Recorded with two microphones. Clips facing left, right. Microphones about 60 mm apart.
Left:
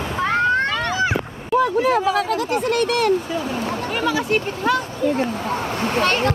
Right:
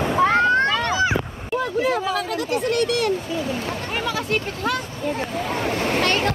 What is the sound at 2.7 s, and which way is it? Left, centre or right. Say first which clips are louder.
Speech: left 2 dB; left.